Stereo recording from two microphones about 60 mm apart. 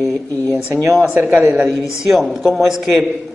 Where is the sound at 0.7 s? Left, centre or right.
Right.